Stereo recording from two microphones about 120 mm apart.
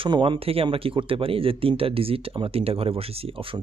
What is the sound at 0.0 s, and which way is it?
Speech, 45° right (ahead or behind).